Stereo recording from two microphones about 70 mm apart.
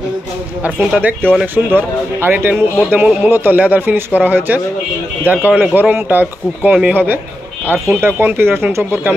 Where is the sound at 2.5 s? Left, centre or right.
Centre.